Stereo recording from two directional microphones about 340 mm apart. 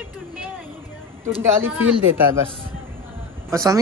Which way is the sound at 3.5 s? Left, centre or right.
Centre.